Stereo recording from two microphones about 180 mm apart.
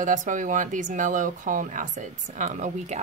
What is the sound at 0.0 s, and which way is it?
Speech, 45° right (ahead or behind).